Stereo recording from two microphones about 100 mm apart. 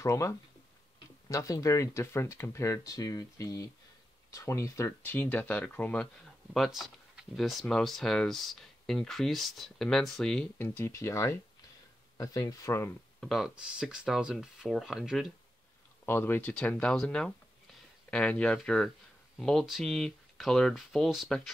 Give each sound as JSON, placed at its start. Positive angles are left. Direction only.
{"t": 0.0, "sound": "speech", "side_deg": 30}
{"t": 5.1, "sound": "speech", "side_deg": 15}
{"t": 6.5, "sound": "speech", "side_deg": 0}
{"t": 10.6, "sound": "speech", "side_deg": 30}
{"t": 13.2, "sound": "speech", "side_deg": 0}
{"t": 13.6, "sound": "speech", "side_deg": -10}
{"t": 16.1, "sound": "speech", "side_deg": 20}
{"t": 16.5, "sound": "speech", "side_deg": 10}